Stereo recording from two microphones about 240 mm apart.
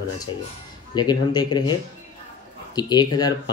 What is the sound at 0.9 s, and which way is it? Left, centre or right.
Speech, centre.